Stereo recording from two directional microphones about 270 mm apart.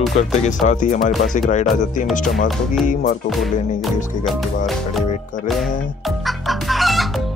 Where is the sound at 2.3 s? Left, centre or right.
Centre.